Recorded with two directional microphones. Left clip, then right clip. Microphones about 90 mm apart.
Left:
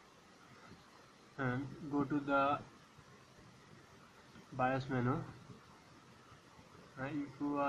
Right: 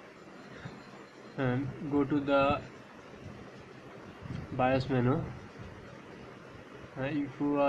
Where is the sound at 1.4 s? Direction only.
10° left (ahead or behind).